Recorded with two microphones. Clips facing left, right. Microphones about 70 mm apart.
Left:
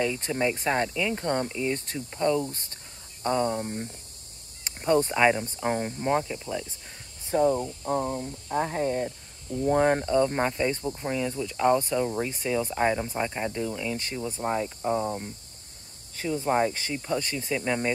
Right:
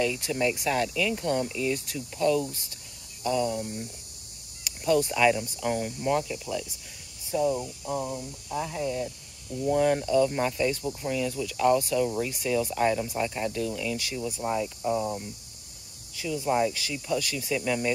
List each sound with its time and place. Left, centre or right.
0.2 s speech: left
1.1 s speech: left
13.0 s speech: left
13.3 s speech: left